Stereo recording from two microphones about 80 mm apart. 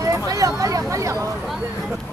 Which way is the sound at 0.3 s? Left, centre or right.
Right.